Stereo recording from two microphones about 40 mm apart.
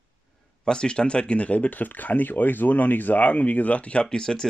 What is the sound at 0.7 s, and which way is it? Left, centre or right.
Speech, left.